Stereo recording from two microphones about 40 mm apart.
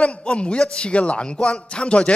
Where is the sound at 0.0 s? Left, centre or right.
Left.